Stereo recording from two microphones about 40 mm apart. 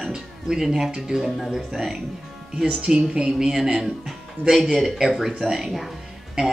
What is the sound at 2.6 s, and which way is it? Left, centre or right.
Speech, right.